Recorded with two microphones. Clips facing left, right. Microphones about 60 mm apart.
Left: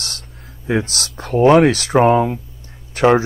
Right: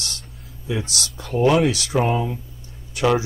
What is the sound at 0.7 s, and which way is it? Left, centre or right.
Speech, left.